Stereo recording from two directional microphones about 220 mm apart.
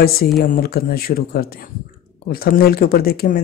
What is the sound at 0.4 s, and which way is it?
Speech, 45° left (ahead or behind).